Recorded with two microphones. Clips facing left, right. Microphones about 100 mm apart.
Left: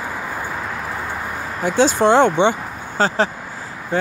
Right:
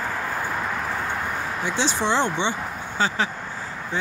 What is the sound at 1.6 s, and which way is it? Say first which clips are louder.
Speech: left 10 dB; 45° left (ahead or behind).